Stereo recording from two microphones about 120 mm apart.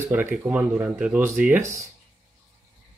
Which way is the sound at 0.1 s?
20° right (ahead or behind).